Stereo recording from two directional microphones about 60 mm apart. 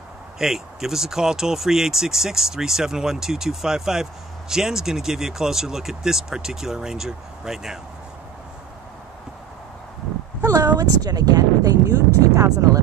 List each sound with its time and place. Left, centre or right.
0.4 s speech: centre
10.4 s speech: right